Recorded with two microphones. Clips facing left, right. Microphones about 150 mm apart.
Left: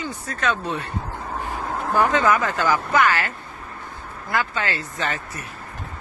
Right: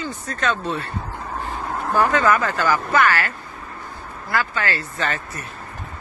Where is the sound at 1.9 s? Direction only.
15° left (ahead or behind).